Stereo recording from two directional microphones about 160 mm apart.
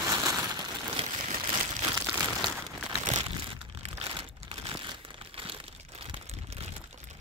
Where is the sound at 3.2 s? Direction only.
35° right (ahead or behind).